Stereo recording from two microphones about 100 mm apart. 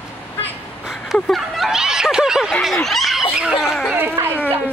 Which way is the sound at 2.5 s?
5° left (ahead or behind).